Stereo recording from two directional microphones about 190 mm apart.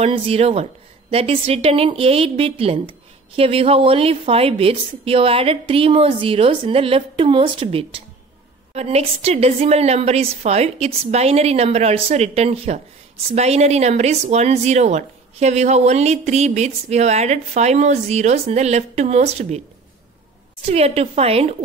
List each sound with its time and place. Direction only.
0.0 s a woman's voice: 30° right (ahead or behind)
20.6 s speech: 30° right (ahead or behind)